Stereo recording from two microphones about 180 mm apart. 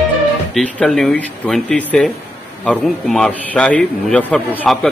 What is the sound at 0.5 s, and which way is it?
A man's voice, 5° left (ahead or behind).